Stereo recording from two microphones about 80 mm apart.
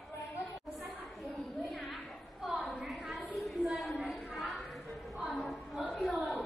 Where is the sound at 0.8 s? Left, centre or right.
Centre.